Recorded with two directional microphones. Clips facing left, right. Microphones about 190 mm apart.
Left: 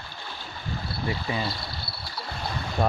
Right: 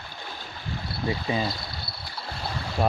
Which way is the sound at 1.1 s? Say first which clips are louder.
Right 3 dB; 20° right (ahead or behind).